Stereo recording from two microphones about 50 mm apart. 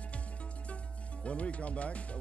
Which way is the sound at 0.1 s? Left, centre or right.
Left.